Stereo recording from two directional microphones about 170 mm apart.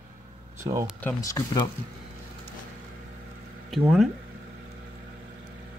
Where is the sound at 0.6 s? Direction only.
15° right (ahead or behind).